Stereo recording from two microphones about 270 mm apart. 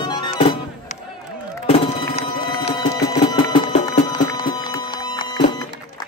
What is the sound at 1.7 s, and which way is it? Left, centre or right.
Music, left.